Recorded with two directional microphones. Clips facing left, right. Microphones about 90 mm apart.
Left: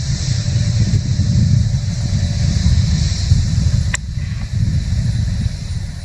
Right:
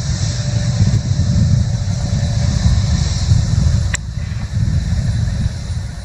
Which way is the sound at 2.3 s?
40° right (ahead or behind).